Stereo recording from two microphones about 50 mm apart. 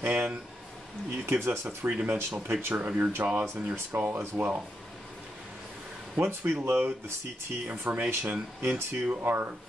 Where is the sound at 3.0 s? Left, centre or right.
Right.